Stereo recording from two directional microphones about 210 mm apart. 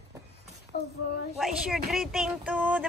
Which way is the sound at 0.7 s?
50° left (ahead or behind).